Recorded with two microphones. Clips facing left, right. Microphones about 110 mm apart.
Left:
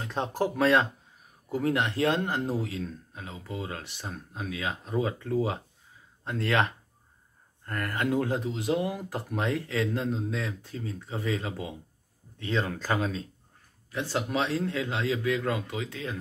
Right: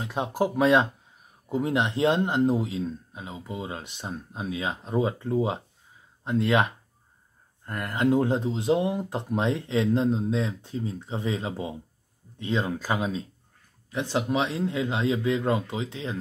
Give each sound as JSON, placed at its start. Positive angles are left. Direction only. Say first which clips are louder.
{"t": 0.0, "sound": "speech", "louder": "right 2 dB", "side_deg": -10}